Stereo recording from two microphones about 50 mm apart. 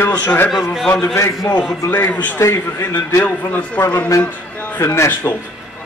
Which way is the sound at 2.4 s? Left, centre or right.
Left.